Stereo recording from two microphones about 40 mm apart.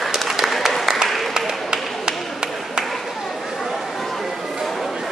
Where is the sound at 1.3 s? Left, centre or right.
Centre.